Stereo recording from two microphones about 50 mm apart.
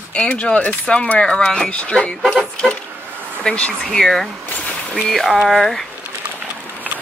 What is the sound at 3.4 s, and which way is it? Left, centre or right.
Speech, left.